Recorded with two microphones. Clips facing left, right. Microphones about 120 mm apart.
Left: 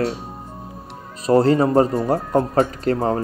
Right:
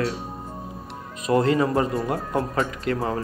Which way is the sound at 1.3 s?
35° left (ahead or behind).